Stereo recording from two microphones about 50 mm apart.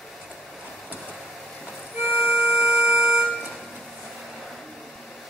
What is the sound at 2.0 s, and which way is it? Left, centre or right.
Music, right.